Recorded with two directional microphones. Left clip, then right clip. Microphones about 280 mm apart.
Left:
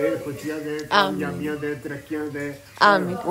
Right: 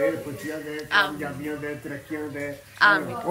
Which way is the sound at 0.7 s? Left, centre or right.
Centre.